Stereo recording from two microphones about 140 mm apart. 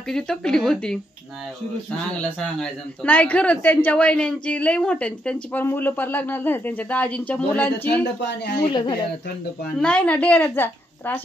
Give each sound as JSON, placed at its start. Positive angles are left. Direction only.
{"t": 0.1, "sound": "speech", "side_deg": 5}
{"t": 2.2, "sound": "a woman's voice", "side_deg": 10}
{"t": 8.6, "sound": "speech", "side_deg": 35}
{"t": 9.8, "sound": "a woman's voice", "side_deg": 10}